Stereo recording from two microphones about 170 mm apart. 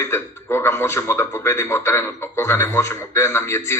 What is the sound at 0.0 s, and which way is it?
A man's voice, 15° left (ahead or behind).